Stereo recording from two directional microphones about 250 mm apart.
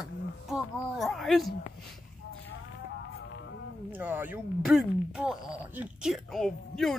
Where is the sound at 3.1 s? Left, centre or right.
Left.